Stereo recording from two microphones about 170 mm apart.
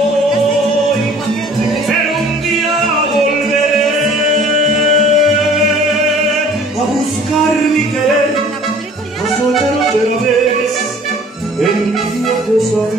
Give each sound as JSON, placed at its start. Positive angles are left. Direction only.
{"t": 4.9, "sound": "music", "side_deg": 40}